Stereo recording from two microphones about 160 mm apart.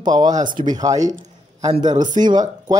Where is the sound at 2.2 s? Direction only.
25° right (ahead or behind).